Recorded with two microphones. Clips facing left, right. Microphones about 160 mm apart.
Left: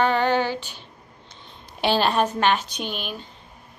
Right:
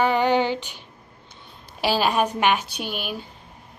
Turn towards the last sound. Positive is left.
turn(degrees=-10)  # may be behind; listen again after turning